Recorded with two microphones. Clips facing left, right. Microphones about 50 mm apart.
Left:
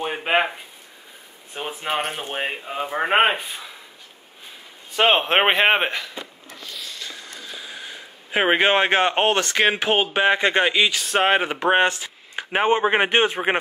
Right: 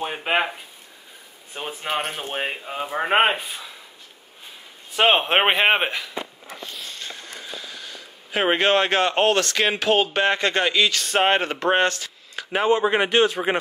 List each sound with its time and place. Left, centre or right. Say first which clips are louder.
0.0 s a sound: left 2 dB; centre
1.5 s speech: left 1 dB; centre
4.9 s speech: even; centre
6.6 s a sound: left 1 dB; right
7.5 s speech: left 1 dB; centre
11.1 s speech: left 1 dB; centre; by 13.6 s left